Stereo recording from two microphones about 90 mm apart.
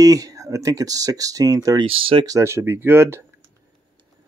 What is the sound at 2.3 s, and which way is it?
Speech, 30° right (ahead or behind).